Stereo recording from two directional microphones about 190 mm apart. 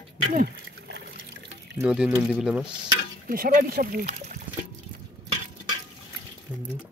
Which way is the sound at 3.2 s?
50° right (ahead or behind).